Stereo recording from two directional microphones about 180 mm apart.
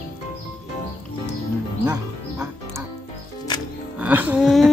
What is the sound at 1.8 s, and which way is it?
Music, 15° right (ahead or behind).